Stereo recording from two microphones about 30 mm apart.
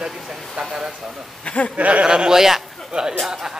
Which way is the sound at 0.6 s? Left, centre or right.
Right.